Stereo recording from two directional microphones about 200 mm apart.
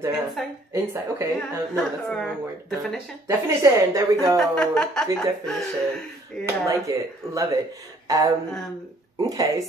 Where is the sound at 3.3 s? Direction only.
15° right (ahead or behind).